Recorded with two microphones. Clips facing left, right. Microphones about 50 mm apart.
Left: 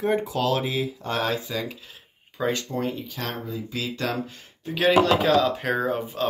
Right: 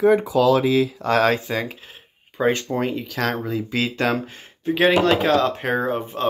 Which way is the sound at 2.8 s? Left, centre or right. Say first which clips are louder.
Right 6 dB; right.